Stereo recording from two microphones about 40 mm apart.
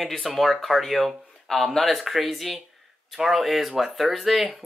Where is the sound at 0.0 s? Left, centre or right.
Centre.